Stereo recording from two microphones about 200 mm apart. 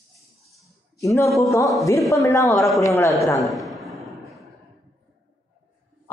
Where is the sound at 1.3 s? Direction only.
15° left (ahead or behind).